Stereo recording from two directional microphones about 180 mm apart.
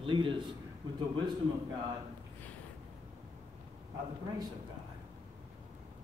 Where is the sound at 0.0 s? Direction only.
30° right (ahead or behind).